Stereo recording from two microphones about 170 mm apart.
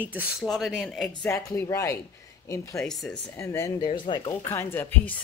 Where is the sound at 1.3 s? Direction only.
15° left (ahead or behind).